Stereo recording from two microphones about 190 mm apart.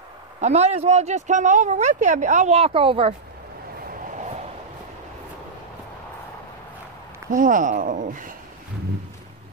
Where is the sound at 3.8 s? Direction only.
45° right (ahead or behind).